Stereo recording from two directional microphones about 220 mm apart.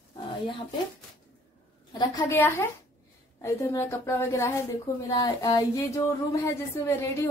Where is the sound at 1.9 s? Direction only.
15° left (ahead or behind).